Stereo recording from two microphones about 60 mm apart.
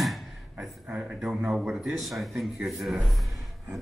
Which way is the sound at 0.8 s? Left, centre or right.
Centre.